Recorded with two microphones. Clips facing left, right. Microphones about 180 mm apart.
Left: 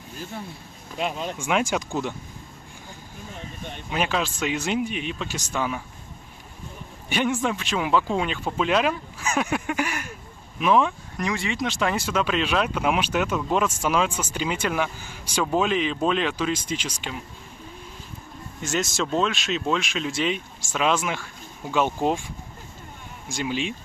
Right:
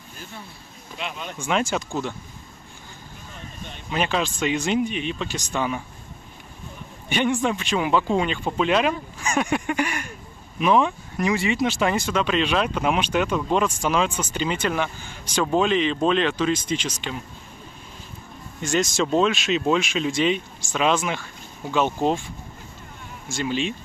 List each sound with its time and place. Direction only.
0.9 s speech: 40° left (ahead or behind)
1.4 s speech: 10° left (ahead or behind)
3.9 s speech: 5° left (ahead or behind)
7.1 s speech: 5° left (ahead or behind)
18.6 s speech: 5° left (ahead or behind)
23.2 s speech: 10° left (ahead or behind)